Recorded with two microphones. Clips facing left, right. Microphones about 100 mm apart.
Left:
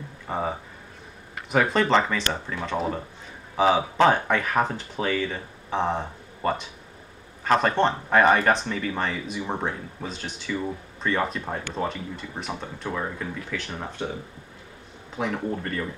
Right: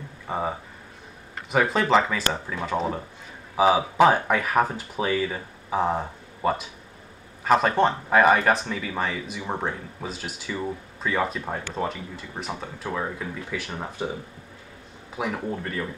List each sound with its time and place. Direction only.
0.3 s speech: centre (ahead or behind)
15.1 s speech: 5° right (ahead or behind)